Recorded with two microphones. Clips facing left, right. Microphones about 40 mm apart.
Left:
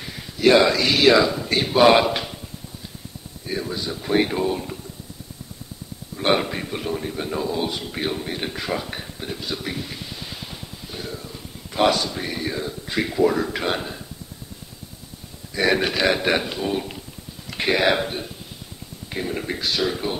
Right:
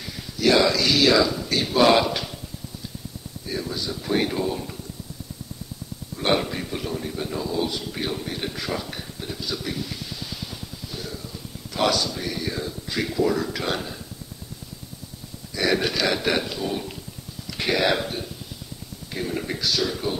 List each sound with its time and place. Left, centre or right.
0.4 s a man's voice: left
3.4 s a man's voice: left
6.1 s a man's voice: centre
10.5 s music: left
11.7 s a man's voice: left
15.5 s a man's voice: left
19.2 s speech: centre
19.6 s a man's voice: left